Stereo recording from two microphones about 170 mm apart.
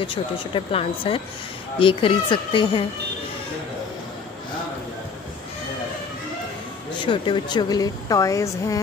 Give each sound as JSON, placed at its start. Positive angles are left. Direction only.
{"t": 0.0, "sound": "speech", "side_deg": 30}
{"t": 7.1, "sound": "speech", "side_deg": 30}